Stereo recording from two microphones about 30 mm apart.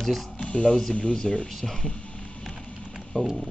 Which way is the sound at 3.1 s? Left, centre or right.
Left.